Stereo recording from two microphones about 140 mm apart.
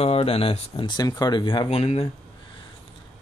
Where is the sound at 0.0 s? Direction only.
45° left (ahead or behind).